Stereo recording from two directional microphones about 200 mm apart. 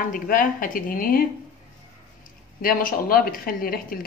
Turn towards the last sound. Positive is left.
turn(degrees=45)  # may be behind; listen again after turning